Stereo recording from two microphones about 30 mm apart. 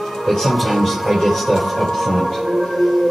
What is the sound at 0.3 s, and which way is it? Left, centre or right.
Music, centre.